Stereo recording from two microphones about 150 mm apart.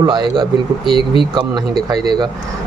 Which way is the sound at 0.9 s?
35° left (ahead or behind).